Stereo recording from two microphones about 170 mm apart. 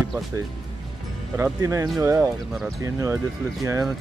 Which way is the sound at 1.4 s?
15° right (ahead or behind).